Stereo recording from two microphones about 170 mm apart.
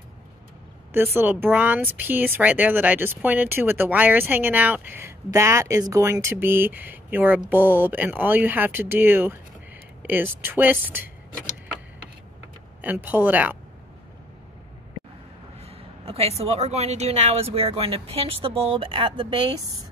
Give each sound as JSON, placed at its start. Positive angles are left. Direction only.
{"t": 0.9, "sound": "speech", "side_deg": -10}
{"t": 12.8, "sound": "speech", "side_deg": -10}
{"t": 15.6, "sound": "a woman's voice", "side_deg": -35}